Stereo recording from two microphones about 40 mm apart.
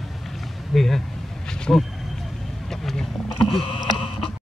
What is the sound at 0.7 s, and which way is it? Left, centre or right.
Speech, centre.